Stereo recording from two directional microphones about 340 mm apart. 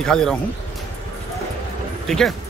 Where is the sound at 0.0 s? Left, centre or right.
Centre.